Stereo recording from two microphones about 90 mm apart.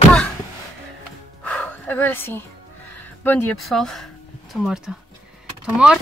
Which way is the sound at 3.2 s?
20° left (ahead or behind).